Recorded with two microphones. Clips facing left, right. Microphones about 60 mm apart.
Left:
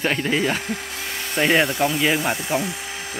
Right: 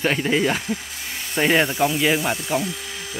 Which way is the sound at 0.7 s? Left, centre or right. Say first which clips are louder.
Even; left.